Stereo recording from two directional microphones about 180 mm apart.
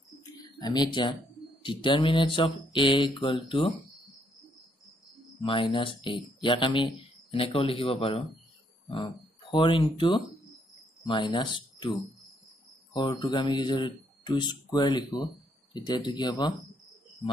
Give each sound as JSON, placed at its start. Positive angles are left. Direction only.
{"t": 0.2, "sound": "a sound", "side_deg": 20}
{"t": 1.6, "sound": "speech", "side_deg": 25}
{"t": 5.4, "sound": "speech", "side_deg": 30}